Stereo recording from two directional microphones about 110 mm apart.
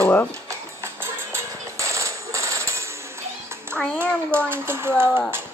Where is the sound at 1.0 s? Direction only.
25° right (ahead or behind).